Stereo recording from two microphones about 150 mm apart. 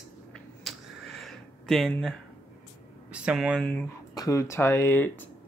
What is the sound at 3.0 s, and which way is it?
Speech, 5° right (ahead or behind).